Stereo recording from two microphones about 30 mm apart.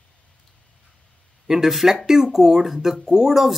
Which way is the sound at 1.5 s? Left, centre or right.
Centre.